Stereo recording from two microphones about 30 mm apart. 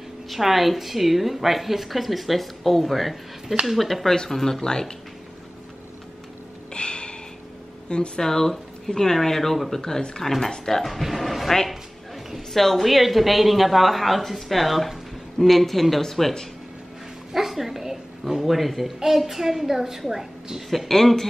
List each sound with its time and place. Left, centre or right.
0.3 s a woman's voice: centre
4.6 s speech: left
6.7 s snort: left
8.2 s speech: centre
10.9 s a woman's voice: centre
12.5 s a woman's voice: centre
17.3 s a sound: centre
18.4 s a woman's voice: centre
18.9 s a child's voice: centre
20.9 s speech: centre